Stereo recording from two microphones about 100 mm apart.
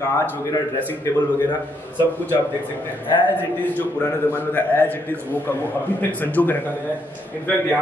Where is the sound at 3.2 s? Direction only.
15° left (ahead or behind).